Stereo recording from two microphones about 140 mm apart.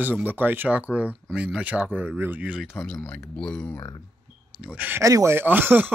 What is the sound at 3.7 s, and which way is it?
Speech, 25° left (ahead or behind).